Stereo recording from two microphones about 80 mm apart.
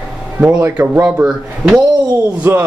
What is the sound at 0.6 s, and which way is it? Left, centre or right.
Speech, right.